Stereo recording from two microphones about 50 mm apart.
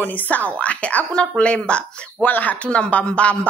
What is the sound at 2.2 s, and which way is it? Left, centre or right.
A woman's voice, left.